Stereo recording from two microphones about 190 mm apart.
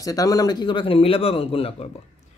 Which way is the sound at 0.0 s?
20° left (ahead or behind).